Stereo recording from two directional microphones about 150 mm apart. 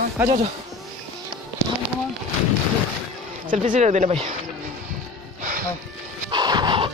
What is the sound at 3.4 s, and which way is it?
Speech, 60° right (ahead or behind).